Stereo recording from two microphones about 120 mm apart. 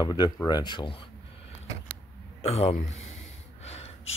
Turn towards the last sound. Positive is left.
turn(degrees=60)  # may be behind; listen again after turning